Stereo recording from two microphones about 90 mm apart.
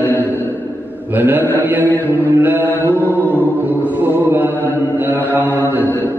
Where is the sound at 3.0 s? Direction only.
25° right (ahead or behind).